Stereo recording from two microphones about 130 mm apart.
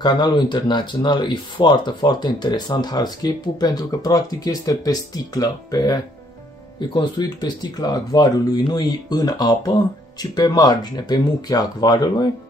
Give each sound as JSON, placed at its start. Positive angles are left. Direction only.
{"t": 0.0, "sound": "speech", "side_deg": 35}